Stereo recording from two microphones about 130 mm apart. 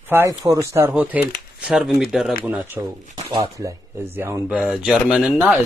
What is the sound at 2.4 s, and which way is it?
Speech, 15° right (ahead or behind).